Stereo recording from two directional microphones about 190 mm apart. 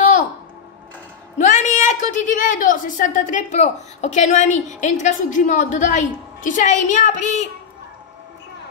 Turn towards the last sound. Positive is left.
turn(degrees=40)  # may be behind; listen again after turning